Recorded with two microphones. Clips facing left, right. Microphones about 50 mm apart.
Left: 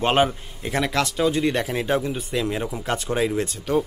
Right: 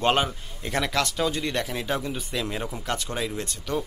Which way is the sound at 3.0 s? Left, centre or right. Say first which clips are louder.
Left 7 dB; left.